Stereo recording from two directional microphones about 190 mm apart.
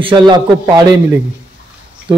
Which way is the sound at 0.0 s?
25° right (ahead or behind).